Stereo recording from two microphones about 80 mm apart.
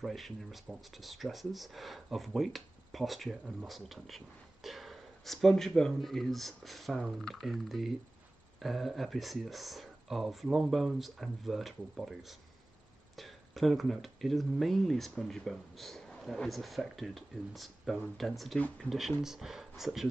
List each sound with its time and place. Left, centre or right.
0.0 s speech: centre